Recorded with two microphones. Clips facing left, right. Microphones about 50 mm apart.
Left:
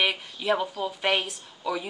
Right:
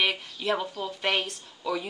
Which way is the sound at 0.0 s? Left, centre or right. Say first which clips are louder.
Left 1 dB; centre.